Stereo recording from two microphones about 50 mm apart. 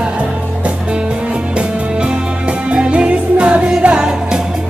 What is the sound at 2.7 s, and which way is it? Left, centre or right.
Music, right.